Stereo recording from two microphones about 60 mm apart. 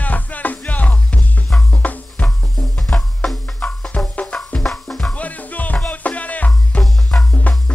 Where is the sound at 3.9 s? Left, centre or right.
Left.